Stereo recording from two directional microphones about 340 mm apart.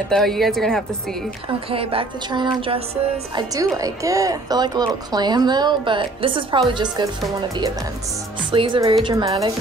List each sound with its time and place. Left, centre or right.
0.1 s a woman's voice: centre
1.7 s a woman's voice: centre
8.5 s a woman's voice: centre